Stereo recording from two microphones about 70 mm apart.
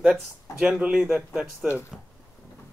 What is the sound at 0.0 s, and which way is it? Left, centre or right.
Speech, centre.